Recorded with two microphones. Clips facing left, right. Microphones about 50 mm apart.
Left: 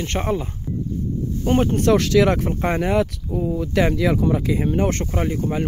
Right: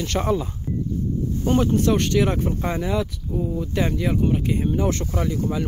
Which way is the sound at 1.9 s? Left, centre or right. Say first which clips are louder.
Left 4 dB; left.